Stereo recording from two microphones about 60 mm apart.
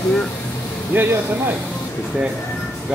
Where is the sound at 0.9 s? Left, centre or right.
Right.